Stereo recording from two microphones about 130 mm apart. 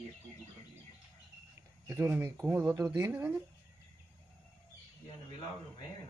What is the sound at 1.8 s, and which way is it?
Speech, 15° right (ahead or behind).